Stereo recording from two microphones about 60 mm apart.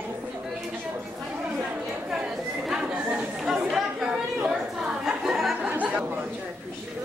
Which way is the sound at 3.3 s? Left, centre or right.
Centre.